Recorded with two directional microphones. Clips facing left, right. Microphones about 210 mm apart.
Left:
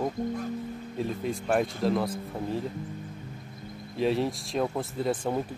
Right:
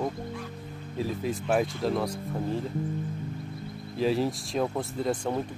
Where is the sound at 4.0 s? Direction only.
Centre (ahead or behind).